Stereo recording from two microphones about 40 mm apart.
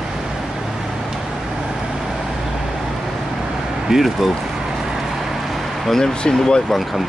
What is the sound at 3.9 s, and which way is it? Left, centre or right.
Speech, centre.